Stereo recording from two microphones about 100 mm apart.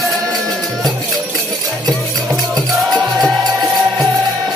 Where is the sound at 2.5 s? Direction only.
40° right (ahead or behind).